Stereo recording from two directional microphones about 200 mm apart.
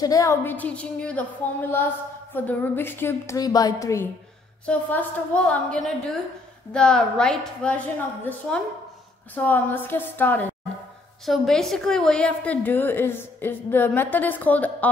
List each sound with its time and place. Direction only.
0.0 s a woman's voice: 15° left (ahead or behind)